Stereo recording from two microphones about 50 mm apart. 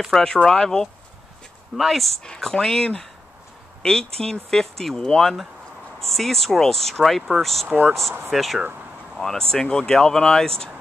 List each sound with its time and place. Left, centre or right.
0.1 s speech: centre
1.8 s speech: centre
2.2 s speech: centre
7.6 s speech: right
8.3 s speech: centre